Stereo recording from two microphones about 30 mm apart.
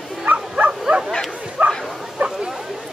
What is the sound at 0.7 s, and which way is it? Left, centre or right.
Bow-wow, right.